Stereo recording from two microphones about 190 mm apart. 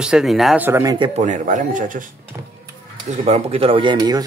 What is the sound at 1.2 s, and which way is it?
Speech, 40° right (ahead or behind).